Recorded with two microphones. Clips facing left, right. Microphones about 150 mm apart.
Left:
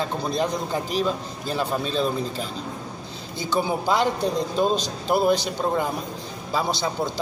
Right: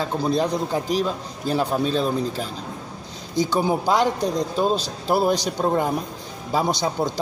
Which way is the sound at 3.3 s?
15° right (ahead or behind).